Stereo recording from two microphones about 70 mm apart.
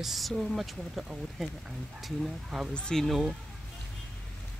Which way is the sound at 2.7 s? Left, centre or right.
Centre.